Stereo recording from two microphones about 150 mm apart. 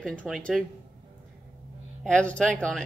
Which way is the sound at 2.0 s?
5° left (ahead or behind).